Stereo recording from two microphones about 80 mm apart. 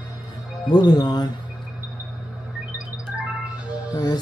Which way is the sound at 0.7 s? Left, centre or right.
Left.